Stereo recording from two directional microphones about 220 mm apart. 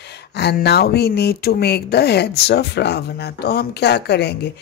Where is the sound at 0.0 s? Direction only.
50° left (ahead or behind).